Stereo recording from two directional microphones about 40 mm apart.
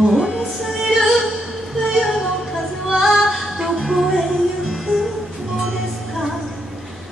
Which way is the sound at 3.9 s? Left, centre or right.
Centre.